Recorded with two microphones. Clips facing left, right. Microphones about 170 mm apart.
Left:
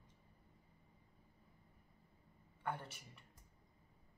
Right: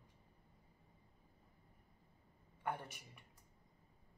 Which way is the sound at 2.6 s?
15° right (ahead or behind).